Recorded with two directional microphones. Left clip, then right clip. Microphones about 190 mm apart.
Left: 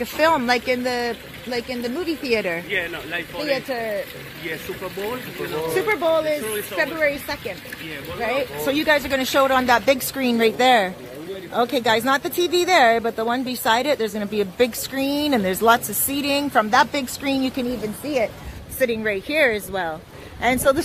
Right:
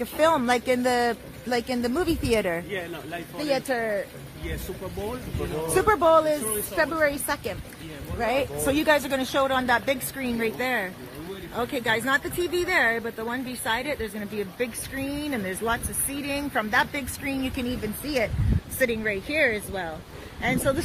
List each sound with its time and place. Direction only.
0.2 s speech: centre (ahead or behind)
0.8 s speech: 10° right (ahead or behind)
2.3 s speech: centre (ahead or behind)
2.7 s speech: 55° right (ahead or behind)
3.4 s a woman's voice: 15° right (ahead or behind)
5.8 s a woman's voice: 15° right (ahead or behind); by 17.6 s 20° left (ahead or behind)
18.0 s speech: 10° left (ahead or behind)
18.8 s speech: 20° left (ahead or behind)